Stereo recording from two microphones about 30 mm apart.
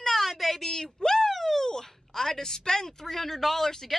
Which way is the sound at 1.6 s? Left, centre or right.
Centre.